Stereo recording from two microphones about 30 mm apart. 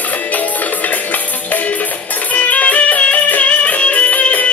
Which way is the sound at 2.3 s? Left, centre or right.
Left.